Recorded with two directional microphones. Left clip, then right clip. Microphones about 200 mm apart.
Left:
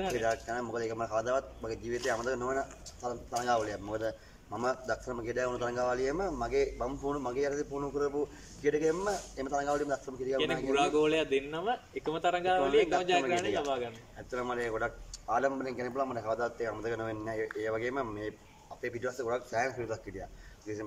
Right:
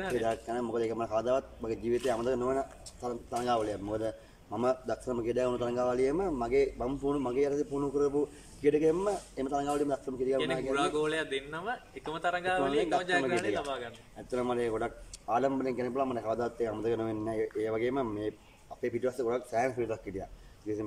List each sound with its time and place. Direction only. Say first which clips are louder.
0.5 s speech: right 2 dB; 15° right (ahead or behind)
10.3 s a man's voice: left 2 dB; 10° left (ahead or behind)
14.3 s speech: right 3 dB; 15° right (ahead or behind)